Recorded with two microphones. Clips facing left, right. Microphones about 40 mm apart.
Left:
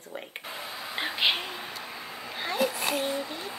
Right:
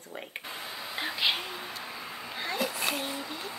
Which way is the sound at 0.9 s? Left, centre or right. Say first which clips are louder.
Left 3 dB; left.